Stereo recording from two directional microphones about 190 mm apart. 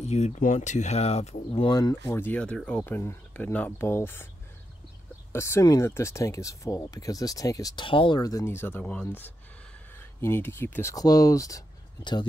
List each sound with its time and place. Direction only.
0.0 s speech: 35° left (ahead or behind); by 4.3 s 10° left (ahead or behind)
5.3 s speech: 15° left (ahead or behind)